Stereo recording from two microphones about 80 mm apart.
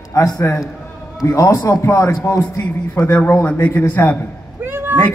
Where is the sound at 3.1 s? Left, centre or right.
Left.